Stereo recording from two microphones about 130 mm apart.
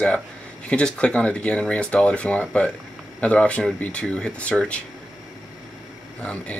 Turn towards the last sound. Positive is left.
turn(degrees=10)  # may be behind; listen again after turning